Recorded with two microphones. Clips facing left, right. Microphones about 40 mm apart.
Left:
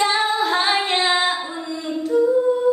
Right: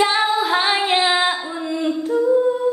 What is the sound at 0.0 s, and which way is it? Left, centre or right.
Female singing, centre.